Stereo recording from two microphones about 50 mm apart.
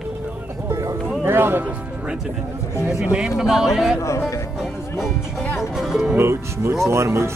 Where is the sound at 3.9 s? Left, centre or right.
Left.